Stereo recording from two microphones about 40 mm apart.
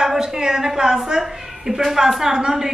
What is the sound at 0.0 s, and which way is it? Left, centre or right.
A woman's voice, centre.